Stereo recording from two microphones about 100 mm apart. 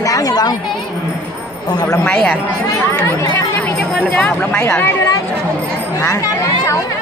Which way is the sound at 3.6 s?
10° left (ahead or behind).